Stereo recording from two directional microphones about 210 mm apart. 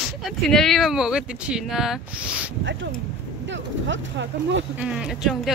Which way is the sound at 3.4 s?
60° right (ahead or behind).